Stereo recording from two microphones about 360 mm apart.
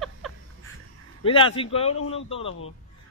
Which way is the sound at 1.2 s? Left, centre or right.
Centre.